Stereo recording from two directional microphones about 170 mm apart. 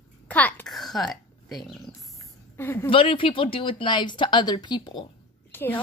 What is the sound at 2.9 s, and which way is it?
Speech, 30° left (ahead or behind).